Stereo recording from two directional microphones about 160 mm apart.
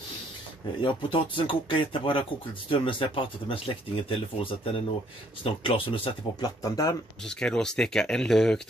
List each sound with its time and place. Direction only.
0.8 s speech: 30° left (ahead or behind)
7.2 s speech: 5° left (ahead or behind)